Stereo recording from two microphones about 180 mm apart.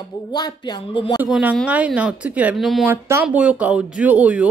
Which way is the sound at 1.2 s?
10° right (ahead or behind).